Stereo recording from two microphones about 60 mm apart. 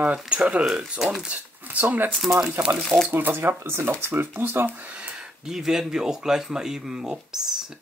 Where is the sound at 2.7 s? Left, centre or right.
Right.